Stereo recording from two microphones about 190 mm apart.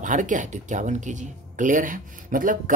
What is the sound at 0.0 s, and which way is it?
Speech, 40° right (ahead or behind).